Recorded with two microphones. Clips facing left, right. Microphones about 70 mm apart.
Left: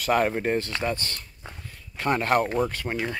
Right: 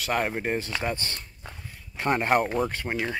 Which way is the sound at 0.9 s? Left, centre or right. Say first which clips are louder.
Left 1 dB; right.